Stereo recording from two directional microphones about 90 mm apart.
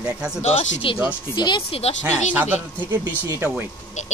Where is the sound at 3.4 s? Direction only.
25° right (ahead or behind).